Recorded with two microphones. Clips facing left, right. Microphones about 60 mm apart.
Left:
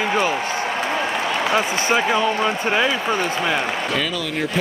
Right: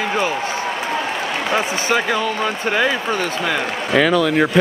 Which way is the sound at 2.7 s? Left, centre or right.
Centre.